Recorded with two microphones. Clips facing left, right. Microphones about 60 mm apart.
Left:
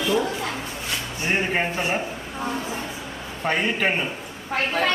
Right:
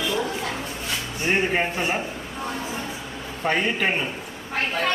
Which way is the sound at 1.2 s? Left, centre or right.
Centre.